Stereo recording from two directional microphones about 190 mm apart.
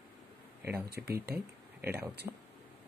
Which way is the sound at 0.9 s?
55° right (ahead or behind).